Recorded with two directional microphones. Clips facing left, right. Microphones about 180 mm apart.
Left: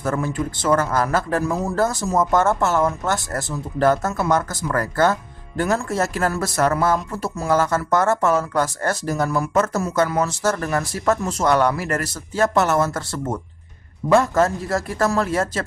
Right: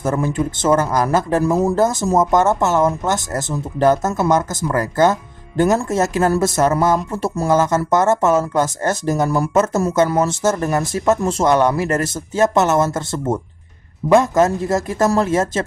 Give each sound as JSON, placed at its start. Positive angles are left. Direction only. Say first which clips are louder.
{"t": 0.0, "sound": "speech", "louder": "right 4 dB", "side_deg": -20}